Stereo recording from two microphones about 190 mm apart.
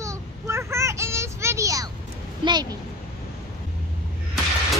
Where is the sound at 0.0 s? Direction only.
15° right (ahead or behind).